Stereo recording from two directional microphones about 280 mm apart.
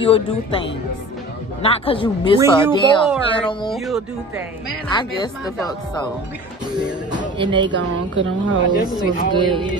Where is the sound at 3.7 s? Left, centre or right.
Centre.